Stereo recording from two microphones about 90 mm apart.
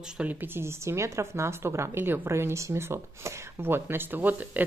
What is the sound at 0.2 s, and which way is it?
A woman's voice, 20° right (ahead or behind).